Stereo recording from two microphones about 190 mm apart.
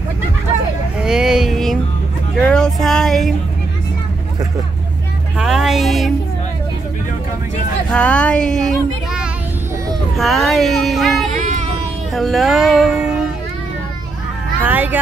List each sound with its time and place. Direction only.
1.0 s a sound: 5° right (ahead or behind)
2.4 s music: 5° left (ahead or behind)
5.4 s a sound: 5° right (ahead or behind)
7.9 s speech: 5° left (ahead or behind)
11.3 s child singing: 40° right (ahead or behind)
12.1 s speech: centre (ahead or behind)
14.6 s speech: 10° right (ahead or behind)